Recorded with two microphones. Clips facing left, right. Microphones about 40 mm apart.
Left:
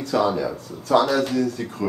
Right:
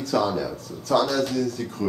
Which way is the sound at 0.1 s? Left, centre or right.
Centre.